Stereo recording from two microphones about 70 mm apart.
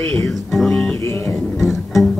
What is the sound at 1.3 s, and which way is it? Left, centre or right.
Music, centre.